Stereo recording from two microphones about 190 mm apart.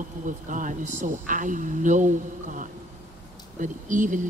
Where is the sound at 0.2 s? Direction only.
45° right (ahead or behind).